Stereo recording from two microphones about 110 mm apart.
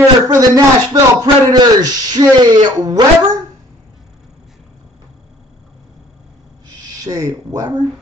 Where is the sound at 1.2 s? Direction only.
40° right (ahead or behind).